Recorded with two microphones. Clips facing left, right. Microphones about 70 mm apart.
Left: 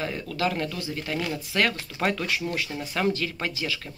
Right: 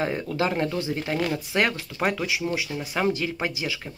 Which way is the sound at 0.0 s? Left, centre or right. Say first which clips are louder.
Right 3 dB; right.